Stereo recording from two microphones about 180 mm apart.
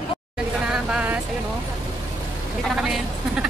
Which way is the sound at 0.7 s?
5° right (ahead or behind).